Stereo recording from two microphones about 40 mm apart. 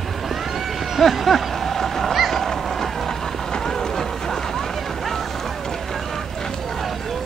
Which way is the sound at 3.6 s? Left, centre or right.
Centre.